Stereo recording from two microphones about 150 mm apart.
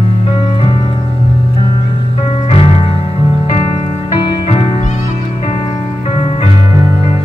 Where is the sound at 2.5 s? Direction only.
40° left (ahead or behind).